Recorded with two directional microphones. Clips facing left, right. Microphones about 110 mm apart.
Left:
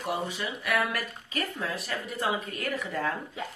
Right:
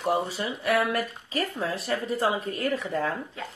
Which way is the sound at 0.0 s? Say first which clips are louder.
Right 5 dB; 30° right (ahead or behind).